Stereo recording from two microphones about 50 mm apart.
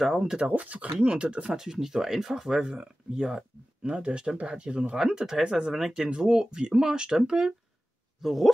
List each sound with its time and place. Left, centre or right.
0.0 s speech: centre
0.4 s speech: right
0.9 s speech: centre
5.8 s speech: centre
6.0 s speech: centre
8.2 s speech: centre